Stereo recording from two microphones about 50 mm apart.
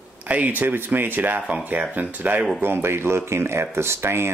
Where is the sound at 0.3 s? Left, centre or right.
Right.